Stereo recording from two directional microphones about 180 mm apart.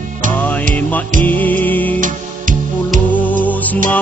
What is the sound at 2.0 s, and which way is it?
Music, 45° right (ahead or behind).